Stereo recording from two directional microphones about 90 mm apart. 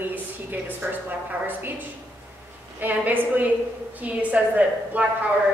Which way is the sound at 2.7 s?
20° right (ahead or behind).